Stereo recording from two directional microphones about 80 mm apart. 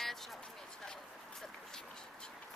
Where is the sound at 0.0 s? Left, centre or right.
Centre.